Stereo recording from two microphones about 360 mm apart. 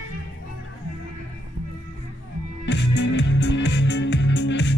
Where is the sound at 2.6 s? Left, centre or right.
Left.